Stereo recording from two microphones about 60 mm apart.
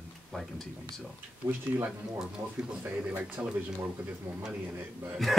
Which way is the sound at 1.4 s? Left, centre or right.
Right.